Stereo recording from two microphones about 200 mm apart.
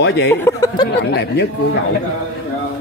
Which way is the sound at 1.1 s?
55° left (ahead or behind).